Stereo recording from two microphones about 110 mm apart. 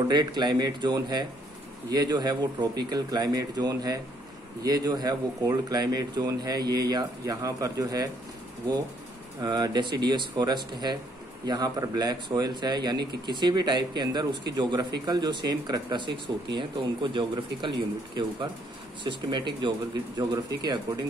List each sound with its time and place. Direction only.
0.1 s speech: 40° right (ahead or behind)
9.4 s speech: 40° right (ahead or behind)